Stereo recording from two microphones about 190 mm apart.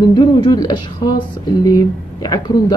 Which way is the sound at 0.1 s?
25° left (ahead or behind).